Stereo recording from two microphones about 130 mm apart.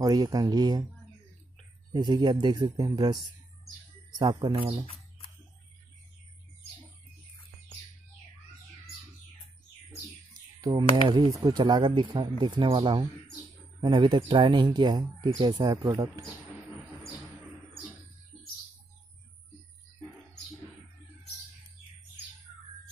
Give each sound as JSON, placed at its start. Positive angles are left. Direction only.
{"t": 0.0, "sound": "speech", "side_deg": -30}
{"t": 1.9, "sound": "speech", "side_deg": -35}
{"t": 10.8, "sound": "speech", "side_deg": -35}